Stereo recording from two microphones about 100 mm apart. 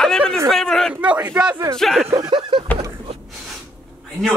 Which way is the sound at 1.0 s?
15° right (ahead or behind).